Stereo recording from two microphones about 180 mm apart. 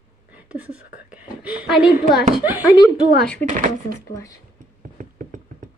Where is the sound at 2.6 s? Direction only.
20° left (ahead or behind).